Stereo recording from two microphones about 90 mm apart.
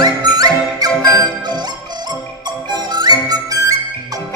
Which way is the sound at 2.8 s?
50° right (ahead or behind).